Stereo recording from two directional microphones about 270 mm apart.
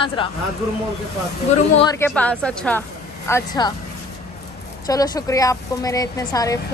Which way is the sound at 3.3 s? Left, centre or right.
Centre.